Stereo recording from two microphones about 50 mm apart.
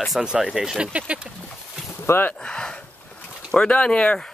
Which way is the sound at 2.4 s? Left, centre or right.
Centre.